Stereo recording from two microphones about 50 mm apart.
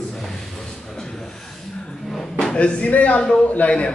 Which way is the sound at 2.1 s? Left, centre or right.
Centre.